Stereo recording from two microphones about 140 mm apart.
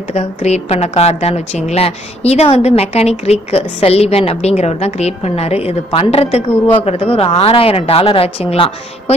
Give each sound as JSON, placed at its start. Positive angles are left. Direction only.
{"t": 0.1, "sound": "a woman's voice", "side_deg": 50}